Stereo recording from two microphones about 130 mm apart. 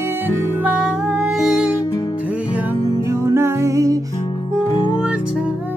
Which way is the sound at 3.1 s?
20° right (ahead or behind).